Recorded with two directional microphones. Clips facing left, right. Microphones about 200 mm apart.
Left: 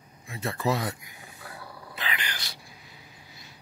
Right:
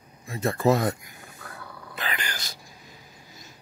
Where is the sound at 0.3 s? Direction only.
45° right (ahead or behind).